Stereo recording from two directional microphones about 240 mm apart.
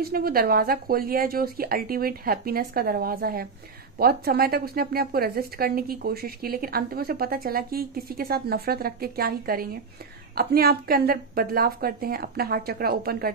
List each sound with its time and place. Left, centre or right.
0.0 s speech: right